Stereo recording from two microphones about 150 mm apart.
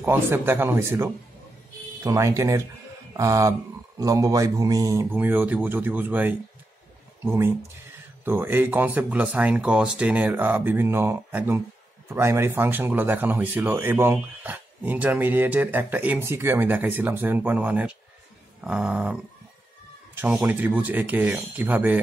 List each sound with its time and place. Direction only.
0.0 s a man's voice: 15° right (ahead or behind)
5.1 s speech: 10° right (ahead or behind)
20.2 s speech: 10° right (ahead or behind)